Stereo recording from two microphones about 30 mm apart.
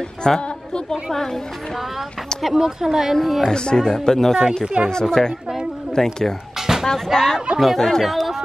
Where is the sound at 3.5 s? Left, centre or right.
Left.